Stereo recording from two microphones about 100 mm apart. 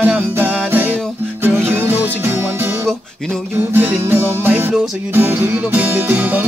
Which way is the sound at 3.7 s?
20° right (ahead or behind).